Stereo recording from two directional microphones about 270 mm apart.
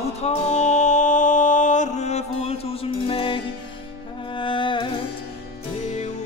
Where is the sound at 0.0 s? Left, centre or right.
Left.